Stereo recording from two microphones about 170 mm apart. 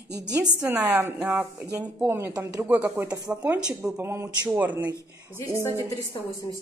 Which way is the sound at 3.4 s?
5° right (ahead or behind).